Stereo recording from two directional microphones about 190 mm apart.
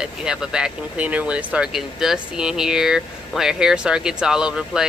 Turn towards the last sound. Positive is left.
turn(degrees=-5)  # may be behind; listen again after turning